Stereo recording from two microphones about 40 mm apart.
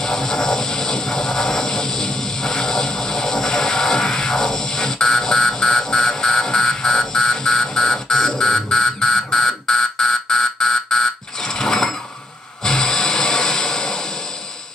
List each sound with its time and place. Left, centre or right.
0.1 s a sound: centre
3.2 s music: centre
5.3 s a sound: left
9.7 s fire alarm: centre
11.5 s pulleys: left
12.6 s music: left